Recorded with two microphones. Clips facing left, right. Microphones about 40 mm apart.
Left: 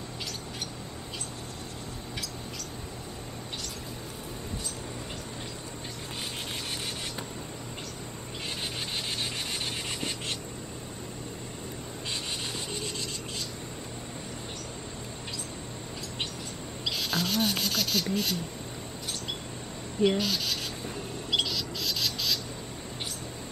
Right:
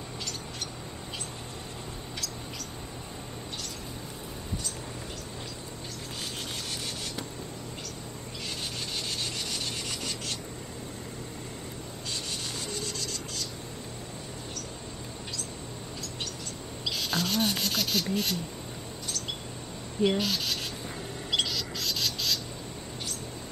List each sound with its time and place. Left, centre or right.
8.9 s rub: left
12.8 s rub: left
16.8 s a sound: centre
20.0 s speech: centre
21.3 s bird: centre